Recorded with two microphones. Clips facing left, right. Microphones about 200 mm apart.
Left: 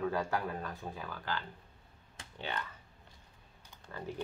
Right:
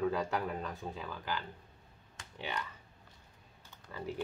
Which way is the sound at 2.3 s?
15° right (ahead or behind).